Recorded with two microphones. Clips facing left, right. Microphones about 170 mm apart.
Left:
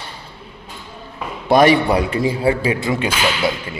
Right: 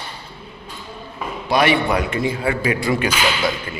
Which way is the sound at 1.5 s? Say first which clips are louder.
Left 5 dB; 40° left (ahead or behind).